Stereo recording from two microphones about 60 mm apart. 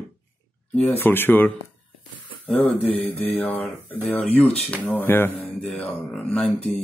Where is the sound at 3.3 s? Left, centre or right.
Left.